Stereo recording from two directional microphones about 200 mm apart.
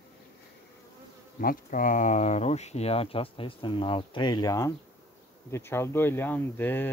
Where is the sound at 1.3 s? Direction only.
45° left (ahead or behind); by 6.9 s 10° left (ahead or behind).